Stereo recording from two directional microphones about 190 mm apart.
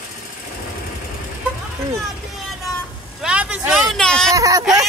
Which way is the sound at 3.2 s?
5° right (ahead or behind).